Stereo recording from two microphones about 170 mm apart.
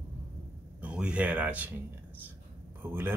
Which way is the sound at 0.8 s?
5° right (ahead or behind).